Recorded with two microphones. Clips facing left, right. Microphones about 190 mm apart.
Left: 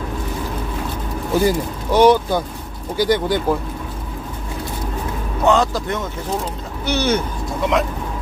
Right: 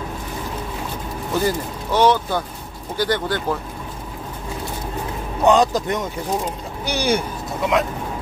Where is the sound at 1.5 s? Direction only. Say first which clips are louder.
Left 3 dB; 10° left (ahead or behind).